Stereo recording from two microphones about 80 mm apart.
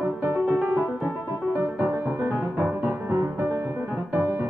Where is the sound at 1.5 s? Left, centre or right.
Right.